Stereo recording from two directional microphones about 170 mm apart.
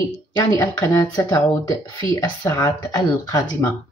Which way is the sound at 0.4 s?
20° left (ahead or behind).